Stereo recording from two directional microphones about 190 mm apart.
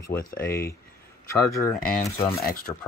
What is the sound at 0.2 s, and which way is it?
Speech, 50° left (ahead or behind).